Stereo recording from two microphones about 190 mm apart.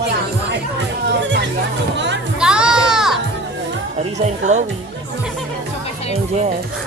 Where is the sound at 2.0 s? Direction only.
70° right (ahead or behind).